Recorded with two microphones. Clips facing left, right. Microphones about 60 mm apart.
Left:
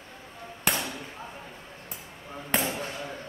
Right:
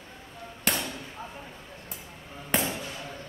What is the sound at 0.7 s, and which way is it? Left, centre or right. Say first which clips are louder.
Chop: left 1 dB; centre.